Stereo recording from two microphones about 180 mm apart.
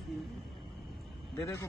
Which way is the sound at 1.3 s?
15° left (ahead or behind).